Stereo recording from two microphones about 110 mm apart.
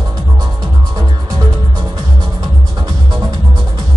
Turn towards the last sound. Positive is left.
turn(degrees=-35)  # may be behind; listen again after turning